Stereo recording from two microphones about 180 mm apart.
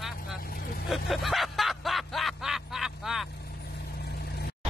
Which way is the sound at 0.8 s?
Centre (ahead or behind).